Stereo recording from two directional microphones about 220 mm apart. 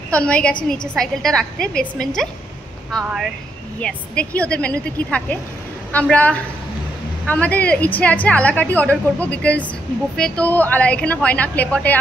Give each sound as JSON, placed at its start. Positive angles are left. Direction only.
{"t": 0.1, "sound": "a woman's voice", "side_deg": 5}